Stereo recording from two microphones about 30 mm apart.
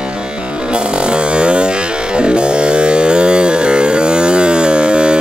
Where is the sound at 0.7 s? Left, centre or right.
Right.